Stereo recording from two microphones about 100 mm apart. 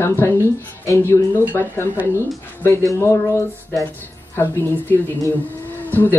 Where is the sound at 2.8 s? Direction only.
30° left (ahead or behind).